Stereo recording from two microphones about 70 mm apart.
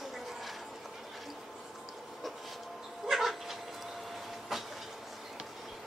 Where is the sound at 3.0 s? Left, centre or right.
Centre.